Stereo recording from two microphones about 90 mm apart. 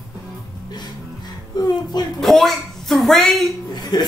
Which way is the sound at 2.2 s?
5° left (ahead or behind).